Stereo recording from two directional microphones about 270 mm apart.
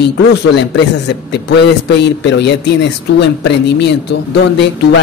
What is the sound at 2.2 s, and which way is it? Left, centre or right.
Speech, left.